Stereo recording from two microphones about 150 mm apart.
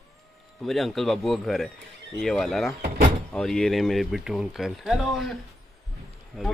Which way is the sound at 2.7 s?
90° right.